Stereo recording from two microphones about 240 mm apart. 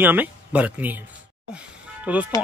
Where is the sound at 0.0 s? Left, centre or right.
Centre.